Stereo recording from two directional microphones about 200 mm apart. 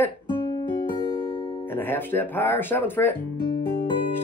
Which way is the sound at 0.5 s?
20° left (ahead or behind).